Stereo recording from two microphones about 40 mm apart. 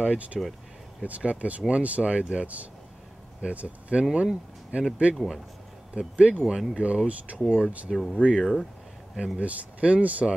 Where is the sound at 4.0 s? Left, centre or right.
Right.